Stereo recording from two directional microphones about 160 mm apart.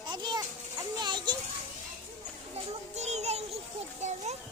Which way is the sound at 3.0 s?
45° right (ahead or behind).